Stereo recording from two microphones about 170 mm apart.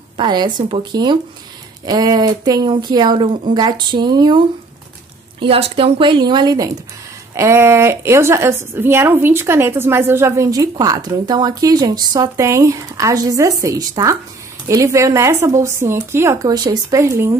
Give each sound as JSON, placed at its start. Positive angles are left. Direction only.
{"t": 0.2, "sound": "a woman's voice", "side_deg": -25}